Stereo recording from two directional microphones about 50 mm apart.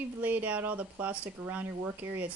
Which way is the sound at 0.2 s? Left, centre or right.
Right.